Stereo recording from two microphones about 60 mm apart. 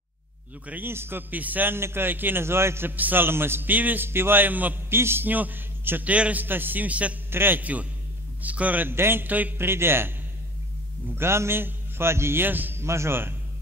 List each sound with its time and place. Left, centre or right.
0.7 s a man's voice: right
1.3 s a man's voice: right
1.8 s a man's voice: right
2.9 s a man's voice: right
4.8 s speech: right
5.3 s a man's voice: right
6.1 s a man's voice: right
6.4 s a man's voice: right
7.2 s a man's voice: right
8.9 s a man's voice: right
9.7 s speech: right
11.1 s a man's voice: right
12.8 s speech: right